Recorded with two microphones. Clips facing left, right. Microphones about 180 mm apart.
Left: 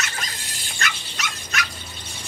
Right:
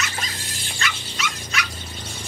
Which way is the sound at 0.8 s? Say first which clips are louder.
Right 1 dB; 45° left (ahead or behind).